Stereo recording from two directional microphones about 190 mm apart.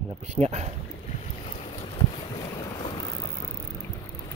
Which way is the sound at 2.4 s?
20° left (ahead or behind).